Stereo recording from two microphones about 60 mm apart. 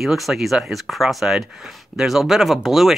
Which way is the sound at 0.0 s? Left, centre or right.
Centre.